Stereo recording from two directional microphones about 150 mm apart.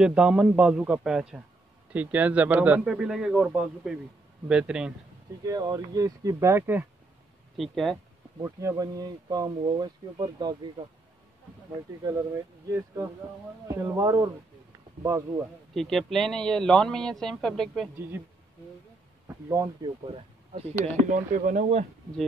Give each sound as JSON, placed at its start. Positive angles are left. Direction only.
{"t": 0.0, "sound": "a man's voice", "side_deg": -5}
{"t": 5.4, "sound": "speech", "side_deg": -25}
{"t": 7.5, "sound": "a man's voice", "side_deg": 0}
{"t": 8.4, "sound": "speech", "side_deg": -20}
{"t": 15.7, "sound": "a man's voice", "side_deg": 0}
{"t": 19.2, "sound": "speech", "side_deg": -20}
{"t": 20.2, "sound": "speech", "side_deg": -40}